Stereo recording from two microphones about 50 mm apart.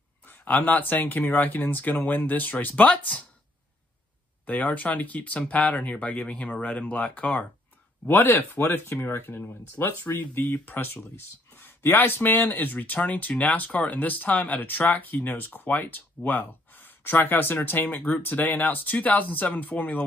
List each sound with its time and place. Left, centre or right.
0.3 s speech: left
4.5 s speech: left